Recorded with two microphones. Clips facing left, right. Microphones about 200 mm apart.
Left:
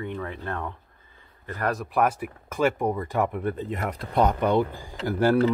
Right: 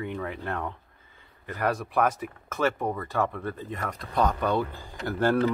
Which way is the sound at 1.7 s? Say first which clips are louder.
Left 1 dB; centre (ahead or behind).